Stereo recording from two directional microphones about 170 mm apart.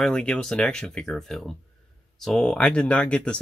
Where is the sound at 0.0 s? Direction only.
5° left (ahead or behind).